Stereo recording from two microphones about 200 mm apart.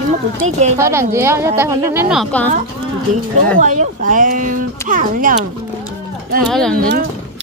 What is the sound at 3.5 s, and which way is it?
Speech, 40° right (ahead or behind).